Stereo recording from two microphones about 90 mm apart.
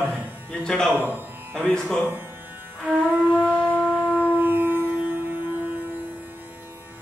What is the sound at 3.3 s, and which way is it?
Shofar, 15° left (ahead or behind).